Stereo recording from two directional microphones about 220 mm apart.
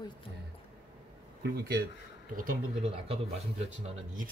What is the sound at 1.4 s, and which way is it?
Speech, 45° right (ahead or behind).